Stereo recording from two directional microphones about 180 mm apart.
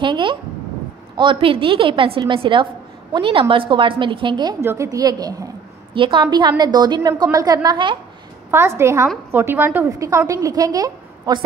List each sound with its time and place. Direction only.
0.0 s a woman's voice: 25° right (ahead or behind)
8.5 s a woman's voice: 15° right (ahead or behind)